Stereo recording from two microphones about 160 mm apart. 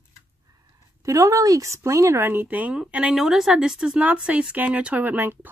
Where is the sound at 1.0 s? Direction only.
20° right (ahead or behind).